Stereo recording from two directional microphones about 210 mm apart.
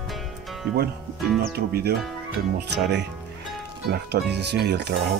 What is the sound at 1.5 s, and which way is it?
Speech, 50° right (ahead or behind).